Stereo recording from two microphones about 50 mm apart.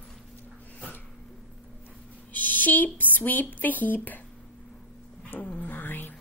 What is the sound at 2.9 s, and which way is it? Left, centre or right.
Speech, left.